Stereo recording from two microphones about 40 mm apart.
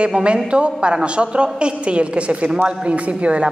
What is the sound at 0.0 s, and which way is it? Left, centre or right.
A woman's voice, right.